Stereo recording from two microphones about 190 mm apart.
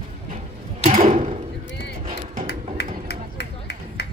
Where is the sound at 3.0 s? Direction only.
60° left (ahead or behind).